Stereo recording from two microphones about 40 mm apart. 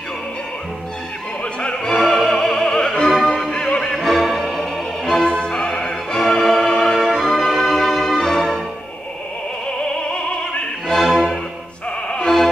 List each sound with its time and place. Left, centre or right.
1.4 s music: left
2.0 s opera: centre
2.8 s music: centre
3.9 s music: centre
5.4 s music: left
11.1 s music: centre
12.1 s music: left